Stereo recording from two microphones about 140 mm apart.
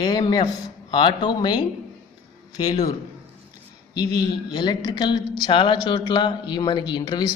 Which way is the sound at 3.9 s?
30° left (ahead or behind).